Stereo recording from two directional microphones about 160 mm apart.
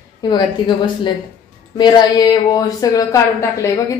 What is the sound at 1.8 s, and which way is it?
A woman's voice, 25° left (ahead or behind).